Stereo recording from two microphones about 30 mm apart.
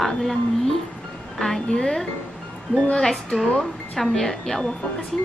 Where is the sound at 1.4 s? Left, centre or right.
Centre.